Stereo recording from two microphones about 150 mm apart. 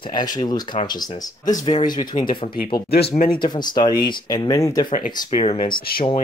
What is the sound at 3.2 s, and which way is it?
Speech, 30° left (ahead or behind).